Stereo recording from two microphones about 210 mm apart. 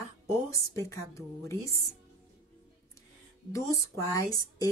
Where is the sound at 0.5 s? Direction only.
15° left (ahead or behind).